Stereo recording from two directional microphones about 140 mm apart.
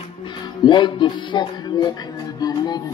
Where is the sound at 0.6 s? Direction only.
35° left (ahead or behind).